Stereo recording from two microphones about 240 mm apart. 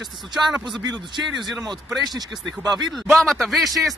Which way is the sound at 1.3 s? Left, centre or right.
Centre.